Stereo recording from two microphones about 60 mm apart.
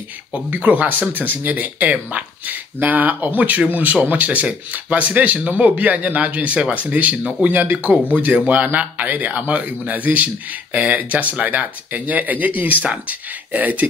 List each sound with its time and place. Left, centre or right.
0.3 s speech: right